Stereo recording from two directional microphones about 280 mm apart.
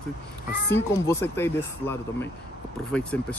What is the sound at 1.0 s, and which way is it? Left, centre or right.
Speech, centre.